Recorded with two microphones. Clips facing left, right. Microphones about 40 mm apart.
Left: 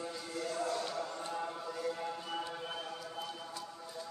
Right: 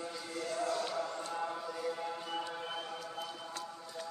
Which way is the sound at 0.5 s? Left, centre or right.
Centre.